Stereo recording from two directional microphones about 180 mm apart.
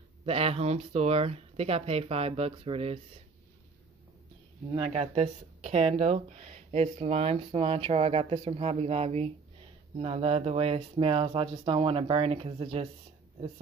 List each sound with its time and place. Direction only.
0.2 s speech: 35° right (ahead or behind)
4.7 s speech: 35° right (ahead or behind)